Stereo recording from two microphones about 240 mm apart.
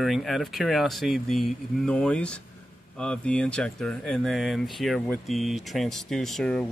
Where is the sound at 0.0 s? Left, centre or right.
Centre.